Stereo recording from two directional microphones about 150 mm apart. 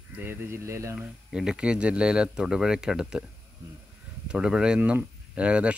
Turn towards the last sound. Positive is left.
turn(degrees=-10)  # may be behind; listen again after turning